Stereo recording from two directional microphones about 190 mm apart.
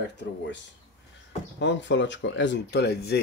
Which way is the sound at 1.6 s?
70° left (ahead or behind).